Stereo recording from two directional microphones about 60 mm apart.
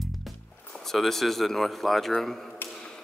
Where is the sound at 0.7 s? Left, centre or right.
Centre.